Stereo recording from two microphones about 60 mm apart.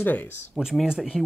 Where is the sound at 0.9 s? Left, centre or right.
Centre.